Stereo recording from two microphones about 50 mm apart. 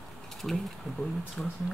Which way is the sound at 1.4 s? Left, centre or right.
Centre.